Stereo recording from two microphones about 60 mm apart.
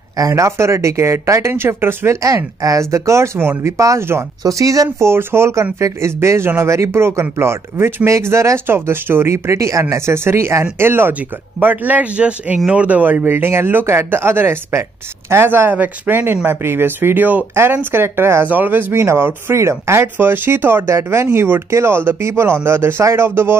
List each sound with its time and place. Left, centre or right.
0.2 s speech: right
2.2 s speech: right
4.4 s speech: right
5.0 s speech: right
11.6 s a man's voice: right
18.5 s speech: right